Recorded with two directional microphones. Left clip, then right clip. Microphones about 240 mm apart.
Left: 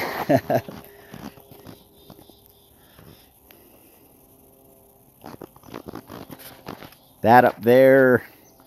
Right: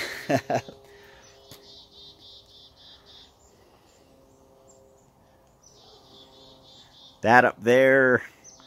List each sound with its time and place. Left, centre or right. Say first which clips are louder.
0.3 s speech: left 5 dB; left
7.2 s speech: left 3 dB; left